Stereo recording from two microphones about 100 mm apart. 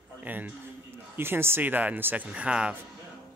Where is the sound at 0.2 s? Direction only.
15° right (ahead or behind).